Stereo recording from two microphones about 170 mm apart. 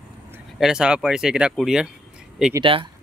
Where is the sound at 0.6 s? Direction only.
5° right (ahead or behind).